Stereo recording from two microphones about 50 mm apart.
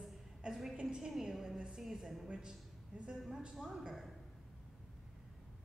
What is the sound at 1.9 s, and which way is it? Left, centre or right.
Speech, centre.